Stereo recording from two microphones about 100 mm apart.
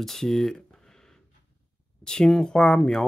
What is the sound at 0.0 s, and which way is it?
Speech, 5° left (ahead or behind).